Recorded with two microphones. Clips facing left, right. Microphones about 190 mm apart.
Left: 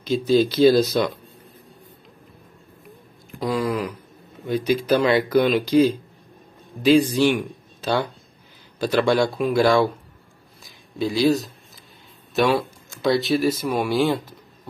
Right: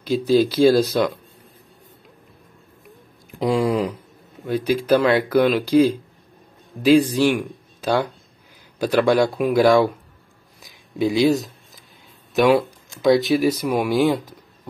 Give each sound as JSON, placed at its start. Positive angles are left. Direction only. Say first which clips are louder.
{"t": 0.1, "sound": "speech", "louder": "right 1 dB", "side_deg": -5}
{"t": 3.3, "sound": "speech", "louder": "right 4 dB", "side_deg": -20}
{"t": 4.5, "sound": "speech", "louder": "right 2 dB", "side_deg": -10}
{"t": 10.6, "sound": "a sound", "louder": "right 4 dB", "side_deg": -20}
{"t": 12.4, "sound": "speech", "louder": "right 4 dB", "side_deg": -15}
{"t": 13.6, "sound": "speech", "louder": "right 2 dB", "side_deg": 0}